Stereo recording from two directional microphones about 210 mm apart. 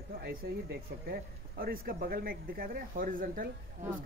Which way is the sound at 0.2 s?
50° right (ahead or behind).